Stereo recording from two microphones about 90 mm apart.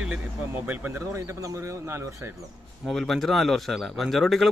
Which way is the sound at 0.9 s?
30° right (ahead or behind).